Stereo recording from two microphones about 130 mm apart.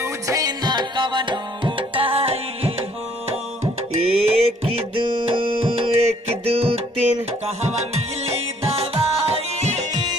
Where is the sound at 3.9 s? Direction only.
50° right (ahead or behind).